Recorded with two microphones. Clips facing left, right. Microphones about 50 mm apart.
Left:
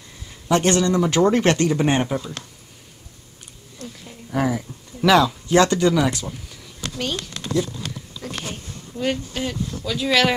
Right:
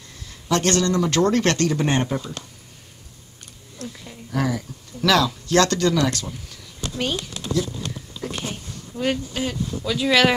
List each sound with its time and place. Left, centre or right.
0.5 s speech: centre
3.7 s a sound: centre
4.3 s speech: centre
7.0 s speech: centre
9.0 s speech: centre